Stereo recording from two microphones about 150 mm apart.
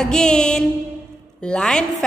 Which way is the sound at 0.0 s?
5° left (ahead or behind).